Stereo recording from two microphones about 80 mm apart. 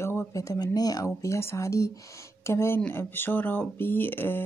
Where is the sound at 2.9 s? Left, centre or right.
Left.